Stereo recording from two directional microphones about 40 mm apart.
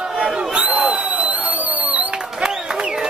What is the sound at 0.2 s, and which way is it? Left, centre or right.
Crowd, right.